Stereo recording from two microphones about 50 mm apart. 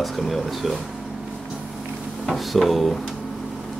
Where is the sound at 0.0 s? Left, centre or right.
Centre.